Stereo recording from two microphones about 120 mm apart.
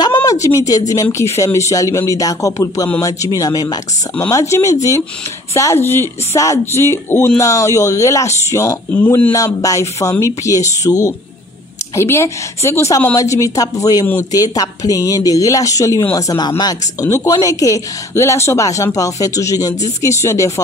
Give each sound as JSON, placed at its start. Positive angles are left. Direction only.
{"t": 0.0, "sound": "a sound", "side_deg": 35}
{"t": 1.1, "sound": "speech", "side_deg": 25}
{"t": 9.0, "sound": "speech", "side_deg": 15}
{"t": 9.3, "sound": "speech", "side_deg": 30}
{"t": 17.0, "sound": "speech", "side_deg": 25}